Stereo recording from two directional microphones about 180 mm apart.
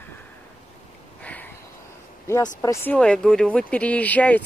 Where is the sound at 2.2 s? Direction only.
15° left (ahead or behind).